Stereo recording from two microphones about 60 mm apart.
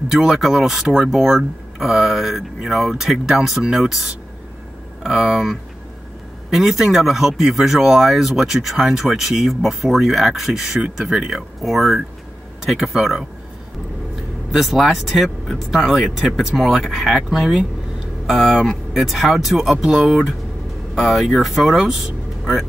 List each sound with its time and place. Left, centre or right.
0.1 s speech: centre
14.5 s speech: centre